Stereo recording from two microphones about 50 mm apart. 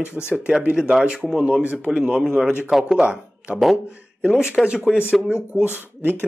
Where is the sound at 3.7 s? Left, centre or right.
Right.